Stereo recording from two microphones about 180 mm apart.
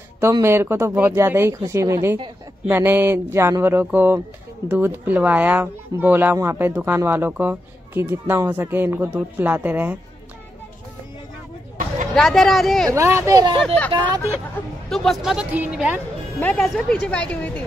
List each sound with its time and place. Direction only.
0.2 s speech: 15° right (ahead or behind)
12.2 s speech: centre (ahead or behind)
12.9 s speech: 15° right (ahead or behind)
13.7 s speech: 10° left (ahead or behind)
16.3 s speech: 5° left (ahead or behind)